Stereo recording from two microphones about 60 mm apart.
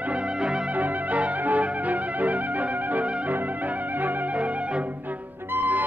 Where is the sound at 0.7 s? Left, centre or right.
Right.